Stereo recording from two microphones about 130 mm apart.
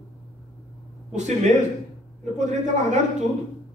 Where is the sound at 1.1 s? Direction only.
65° right (ahead or behind).